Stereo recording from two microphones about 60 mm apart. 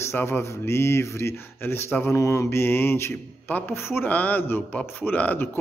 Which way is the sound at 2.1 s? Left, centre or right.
Left.